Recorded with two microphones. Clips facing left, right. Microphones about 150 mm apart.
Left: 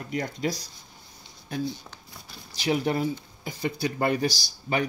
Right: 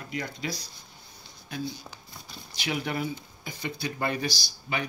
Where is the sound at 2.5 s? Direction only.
35° left (ahead or behind).